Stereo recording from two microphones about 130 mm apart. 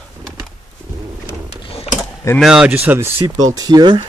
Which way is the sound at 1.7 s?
50° left (ahead or behind).